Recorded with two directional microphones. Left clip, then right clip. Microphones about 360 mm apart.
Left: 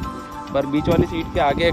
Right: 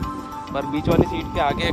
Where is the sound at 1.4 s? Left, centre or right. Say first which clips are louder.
Left 3 dB; centre.